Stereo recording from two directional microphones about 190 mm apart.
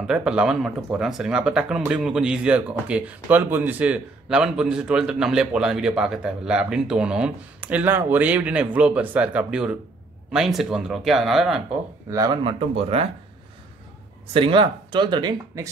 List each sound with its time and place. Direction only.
0.0 s speech: 5° right (ahead or behind)
12.1 s speech: 20° right (ahead or behind)
14.3 s speech: 25° right (ahead or behind)